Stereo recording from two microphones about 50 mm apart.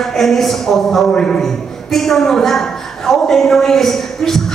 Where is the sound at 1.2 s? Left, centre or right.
Centre.